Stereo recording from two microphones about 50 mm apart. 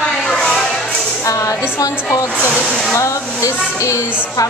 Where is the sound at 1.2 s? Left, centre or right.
Left.